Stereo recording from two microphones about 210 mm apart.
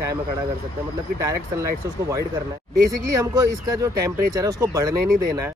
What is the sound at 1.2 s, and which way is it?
Speech, 15° right (ahead or behind).